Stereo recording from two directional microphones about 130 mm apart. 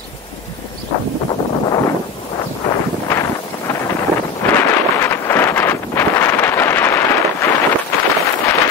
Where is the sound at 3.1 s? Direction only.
25° left (ahead or behind).